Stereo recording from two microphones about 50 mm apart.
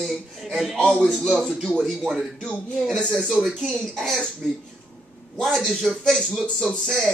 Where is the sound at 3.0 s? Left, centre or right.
Centre.